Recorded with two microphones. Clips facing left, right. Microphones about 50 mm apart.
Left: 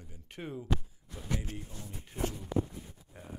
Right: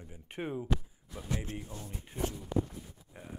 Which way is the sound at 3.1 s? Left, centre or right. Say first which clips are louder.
Right 1 dB; centre.